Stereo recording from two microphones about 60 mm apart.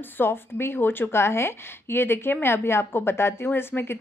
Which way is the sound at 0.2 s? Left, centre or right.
Left.